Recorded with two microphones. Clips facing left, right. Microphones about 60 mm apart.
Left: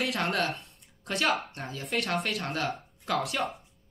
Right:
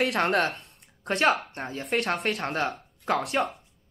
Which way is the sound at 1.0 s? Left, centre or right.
Right.